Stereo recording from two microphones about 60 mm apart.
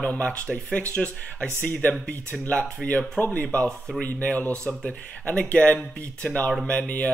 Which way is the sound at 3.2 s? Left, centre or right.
Left.